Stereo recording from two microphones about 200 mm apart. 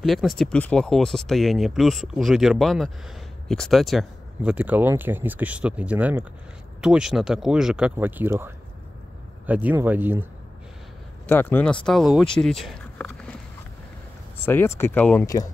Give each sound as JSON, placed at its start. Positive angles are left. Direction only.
{"t": 0.0, "sound": "speech", "side_deg": 0}
{"t": 11.2, "sound": "speech", "side_deg": 10}
{"t": 14.4, "sound": "speech", "side_deg": 10}